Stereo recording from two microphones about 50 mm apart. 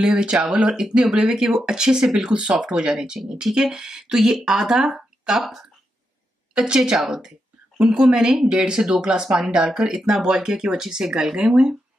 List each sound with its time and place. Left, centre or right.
0.0 s speech: centre
6.6 s speech: centre